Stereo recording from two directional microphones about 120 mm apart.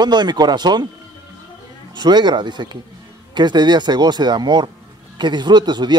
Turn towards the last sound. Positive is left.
turn(degrees=-40)  # may be behind; listen again after turning